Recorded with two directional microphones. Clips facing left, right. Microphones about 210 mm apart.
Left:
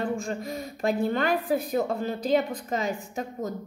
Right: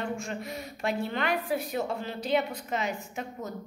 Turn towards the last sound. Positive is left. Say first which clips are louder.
# left 5 dB
turn(degrees=40)  # may be behind; listen again after turning